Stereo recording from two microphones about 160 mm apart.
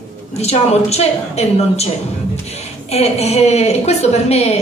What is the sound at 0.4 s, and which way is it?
A woman's voice, 40° left (ahead or behind).